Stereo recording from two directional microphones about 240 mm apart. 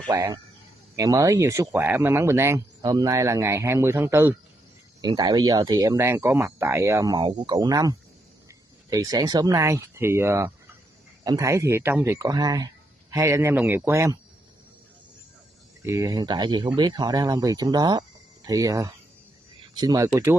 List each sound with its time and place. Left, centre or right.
0.1 s speech: centre
15.8 s speech: centre